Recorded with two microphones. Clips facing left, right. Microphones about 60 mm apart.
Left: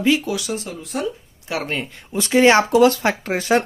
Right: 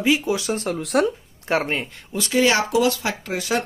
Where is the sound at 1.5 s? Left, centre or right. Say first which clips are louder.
Right 4 dB; right.